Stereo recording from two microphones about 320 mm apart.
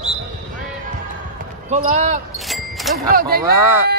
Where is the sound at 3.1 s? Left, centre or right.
Right.